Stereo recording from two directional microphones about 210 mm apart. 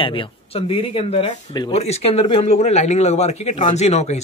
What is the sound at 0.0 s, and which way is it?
Speech, 25° left (ahead or behind).